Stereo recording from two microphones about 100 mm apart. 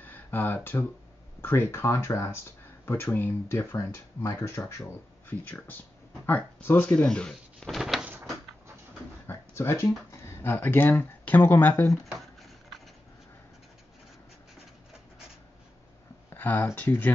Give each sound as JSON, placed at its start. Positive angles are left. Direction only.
{"t": 0.0, "sound": "speech", "side_deg": 20}
{"t": 5.3, "sound": "speech", "side_deg": 20}
{"t": 8.0, "sound": "door", "side_deg": -15}
{"t": 9.3, "sound": "a sound", "side_deg": 25}
{"t": 10.4, "sound": "speech", "side_deg": 20}
{"t": 12.1, "sound": "a sound", "side_deg": 0}
{"t": 16.3, "sound": "speech", "side_deg": 20}